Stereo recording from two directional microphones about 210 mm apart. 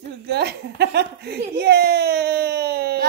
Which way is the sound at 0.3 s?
50° right (ahead or behind).